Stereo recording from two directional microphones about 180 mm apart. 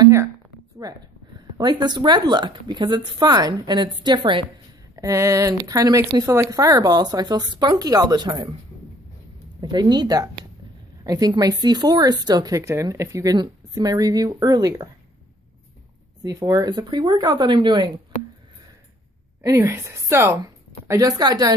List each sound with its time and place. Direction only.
0.0 s a sound: 15° right (ahead or behind)
0.8 s speech: 20° right (ahead or behind)
9.6 s speech: 25° right (ahead or behind)
16.2 s speech: 20° right (ahead or behind)
19.4 s speech: 15° right (ahead or behind)